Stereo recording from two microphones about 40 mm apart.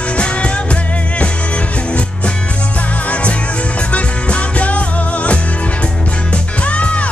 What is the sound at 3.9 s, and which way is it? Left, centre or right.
Music, left.